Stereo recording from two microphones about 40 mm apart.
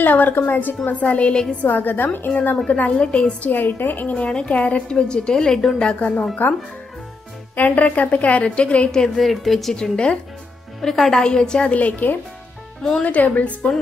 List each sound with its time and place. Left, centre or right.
0.0 s a woman's voice: left
0.8 s a woman's voice: left
1.6 s a woman's voice: left
2.7 s a woman's voice: left
3.4 s a woman's voice: left
4.1 s a woman's voice: left
5.9 s a woman's voice: left
7.5 s a woman's voice: left
8.9 s a woman's voice: centre
9.2 s a woman's voice: centre
9.8 s a woman's voice: left
10.8 s a woman's voice: centre
11.6 s a woman's voice: left